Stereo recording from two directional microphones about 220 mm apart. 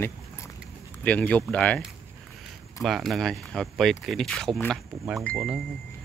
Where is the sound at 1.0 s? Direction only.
5° left (ahead or behind).